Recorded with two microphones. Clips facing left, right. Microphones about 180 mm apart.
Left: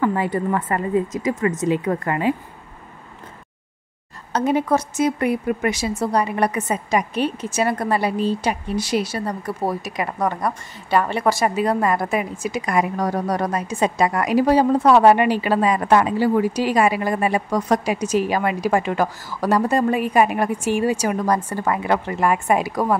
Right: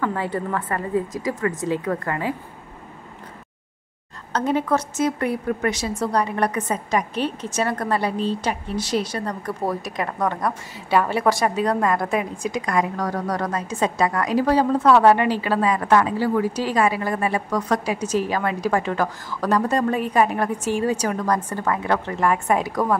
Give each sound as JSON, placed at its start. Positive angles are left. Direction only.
{"t": 0.0, "sound": "a woman's voice", "side_deg": 15}
{"t": 4.3, "sound": "a woman's voice", "side_deg": 10}